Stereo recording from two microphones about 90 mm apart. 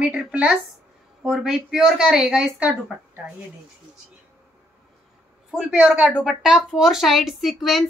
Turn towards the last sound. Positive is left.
turn(degrees=-5)  # may be behind; listen again after turning